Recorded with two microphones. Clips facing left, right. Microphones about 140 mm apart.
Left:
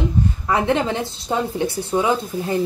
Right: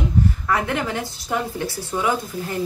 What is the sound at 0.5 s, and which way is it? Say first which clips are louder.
A woman's voice: left 4 dB; 20° left (ahead or behind).